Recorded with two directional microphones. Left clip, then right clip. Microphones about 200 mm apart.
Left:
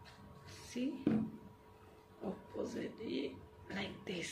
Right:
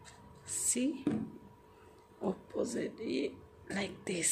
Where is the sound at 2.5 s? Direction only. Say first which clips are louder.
Right 6 dB; 45° right (ahead or behind).